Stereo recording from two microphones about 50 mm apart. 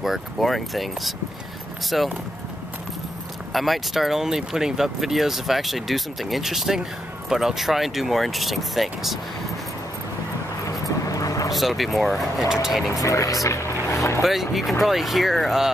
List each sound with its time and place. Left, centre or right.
0.0 s speech: centre
3.5 s speech: centre
11.5 s speech: centre
13.0 s speech: left
14.2 s speech: centre